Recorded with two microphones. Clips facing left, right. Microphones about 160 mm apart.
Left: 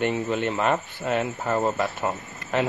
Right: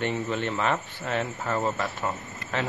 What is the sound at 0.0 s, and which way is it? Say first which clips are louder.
Speech: left 4 dB; 5° left (ahead or behind).